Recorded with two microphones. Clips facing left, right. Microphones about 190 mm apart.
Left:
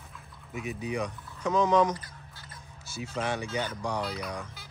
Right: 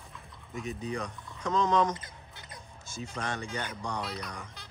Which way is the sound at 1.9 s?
20° right (ahead or behind).